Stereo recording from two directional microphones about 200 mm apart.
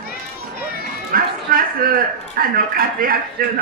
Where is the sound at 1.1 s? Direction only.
45° right (ahead or behind).